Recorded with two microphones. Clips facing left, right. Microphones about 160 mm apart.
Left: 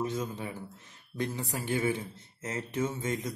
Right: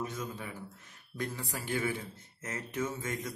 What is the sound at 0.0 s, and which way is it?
A man's voice, 25° left (ahead or behind).